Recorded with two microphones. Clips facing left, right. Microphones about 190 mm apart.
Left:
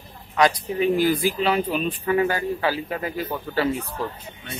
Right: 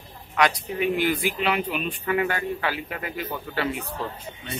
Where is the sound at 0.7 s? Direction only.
35° left (ahead or behind).